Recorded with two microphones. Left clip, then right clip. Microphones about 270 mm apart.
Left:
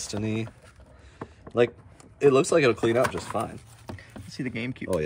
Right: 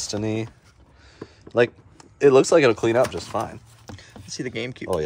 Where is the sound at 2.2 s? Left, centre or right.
Right.